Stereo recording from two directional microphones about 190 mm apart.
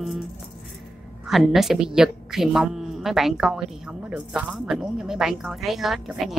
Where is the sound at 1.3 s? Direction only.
Centre (ahead or behind).